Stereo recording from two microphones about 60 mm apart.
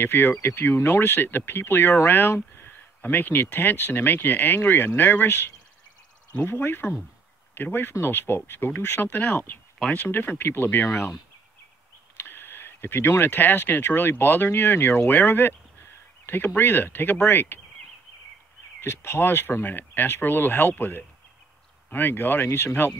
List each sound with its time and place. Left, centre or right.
0.0 s speech: left
2.6 s speech: left
12.2 s speech: left
18.8 s speech: left